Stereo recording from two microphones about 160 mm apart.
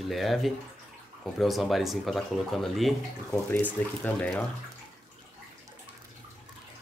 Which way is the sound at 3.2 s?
10° left (ahead or behind).